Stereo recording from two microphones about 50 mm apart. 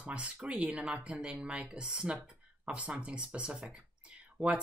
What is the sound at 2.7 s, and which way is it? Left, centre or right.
Speech, right.